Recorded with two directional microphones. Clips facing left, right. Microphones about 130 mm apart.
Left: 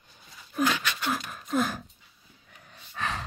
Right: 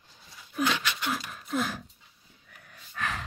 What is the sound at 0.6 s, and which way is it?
Pant, 40° left (ahead or behind).